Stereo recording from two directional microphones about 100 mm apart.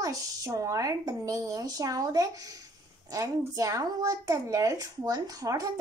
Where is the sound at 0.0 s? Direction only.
35° right (ahead or behind).